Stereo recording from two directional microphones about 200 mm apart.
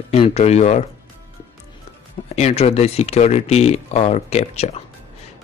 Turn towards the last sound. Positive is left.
turn(degrees=30)  # may be behind; listen again after turning